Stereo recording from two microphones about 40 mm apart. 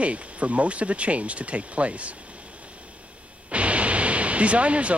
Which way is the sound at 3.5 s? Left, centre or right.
Right.